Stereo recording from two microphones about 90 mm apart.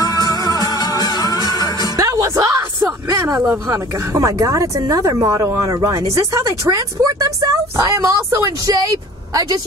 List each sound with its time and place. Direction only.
0.0 s music: 45° left (ahead or behind)
2.0 s music: 40° right (ahead or behind)
2.8 s a sound: 40° right (ahead or behind)
3.7 s speech: 40° right (ahead or behind)